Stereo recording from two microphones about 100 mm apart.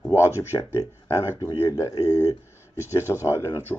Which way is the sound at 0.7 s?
25° left (ahead or behind).